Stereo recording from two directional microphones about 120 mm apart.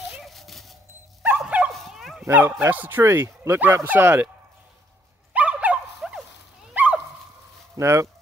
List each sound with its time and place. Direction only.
0.1 s a sound: centre (ahead or behind)
1.4 s dog: 10° right (ahead or behind)
1.7 s dog: centre (ahead or behind)
2.2 s speech: 15° right (ahead or behind)
5.3 s dog: 10° right (ahead or behind)
7.7 s speech: 25° right (ahead or behind)